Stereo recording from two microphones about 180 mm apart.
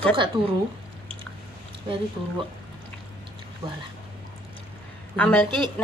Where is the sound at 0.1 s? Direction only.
25° right (ahead or behind).